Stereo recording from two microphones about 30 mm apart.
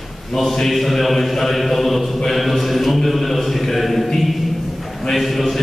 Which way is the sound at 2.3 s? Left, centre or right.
Centre.